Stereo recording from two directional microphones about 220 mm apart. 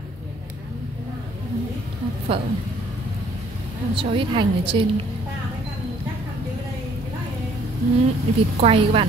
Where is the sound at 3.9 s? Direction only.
25° right (ahead or behind).